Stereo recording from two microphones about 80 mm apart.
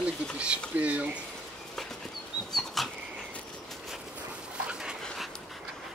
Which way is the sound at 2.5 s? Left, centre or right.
Centre.